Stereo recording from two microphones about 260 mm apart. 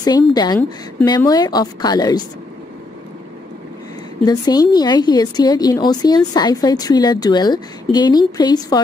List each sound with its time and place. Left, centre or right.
0.0 s a woman's voice: centre
4.2 s a woman's voice: centre